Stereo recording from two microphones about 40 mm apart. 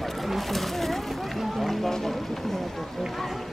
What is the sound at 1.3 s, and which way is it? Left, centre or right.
Run, centre.